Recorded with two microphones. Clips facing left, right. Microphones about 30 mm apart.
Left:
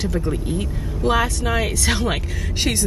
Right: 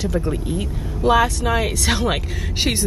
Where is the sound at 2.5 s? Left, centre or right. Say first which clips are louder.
Right 1 dB; centre.